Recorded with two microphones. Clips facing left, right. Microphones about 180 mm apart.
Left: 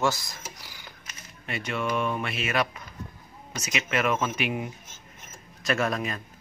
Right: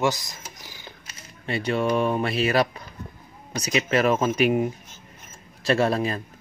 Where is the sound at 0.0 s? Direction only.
20° right (ahead or behind).